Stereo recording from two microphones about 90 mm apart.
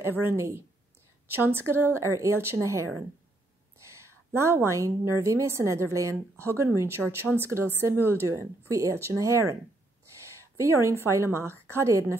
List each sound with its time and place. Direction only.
0.4 s speech: 30° right (ahead or behind)
3.8 s a sound: 30° right (ahead or behind)
5.2 s speech: 30° right (ahead or behind)